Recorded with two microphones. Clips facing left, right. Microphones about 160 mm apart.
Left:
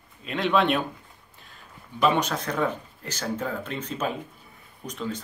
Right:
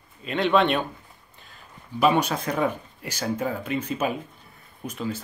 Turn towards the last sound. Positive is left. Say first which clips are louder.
# right 2 dB
turn(degrees=-5)  # may be behind; listen again after turning